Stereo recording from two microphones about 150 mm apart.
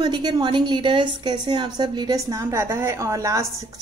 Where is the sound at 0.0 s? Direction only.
30° right (ahead or behind).